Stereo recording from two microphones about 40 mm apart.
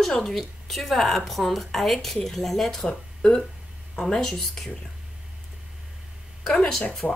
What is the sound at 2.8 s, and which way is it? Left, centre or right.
A woman's voice, left.